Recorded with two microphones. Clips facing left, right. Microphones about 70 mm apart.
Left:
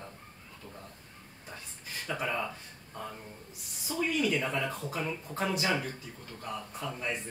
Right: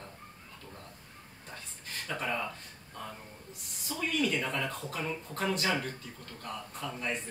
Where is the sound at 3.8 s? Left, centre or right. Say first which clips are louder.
Left 2 dB; centre.